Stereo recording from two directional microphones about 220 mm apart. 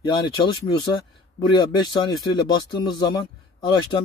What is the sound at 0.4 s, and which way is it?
Speech, 20° left (ahead or behind).